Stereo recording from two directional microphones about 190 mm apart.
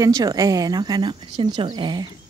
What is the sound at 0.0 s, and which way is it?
Speech, 20° right (ahead or behind).